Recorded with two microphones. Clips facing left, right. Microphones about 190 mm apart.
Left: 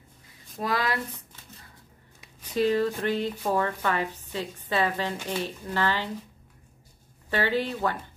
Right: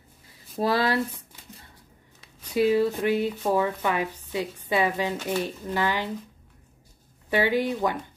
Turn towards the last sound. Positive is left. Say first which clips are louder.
# right 3 dB
turn(degrees=-15)  # may be behind; listen again after turning